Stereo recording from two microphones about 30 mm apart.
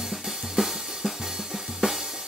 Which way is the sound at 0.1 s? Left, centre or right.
Centre.